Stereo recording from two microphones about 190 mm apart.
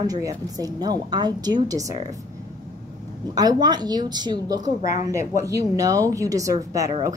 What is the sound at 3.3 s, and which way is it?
A woman's voice, 20° right (ahead or behind).